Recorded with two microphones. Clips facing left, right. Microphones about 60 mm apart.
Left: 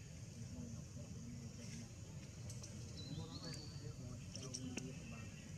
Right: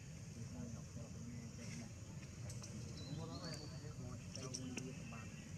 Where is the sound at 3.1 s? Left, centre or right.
Right.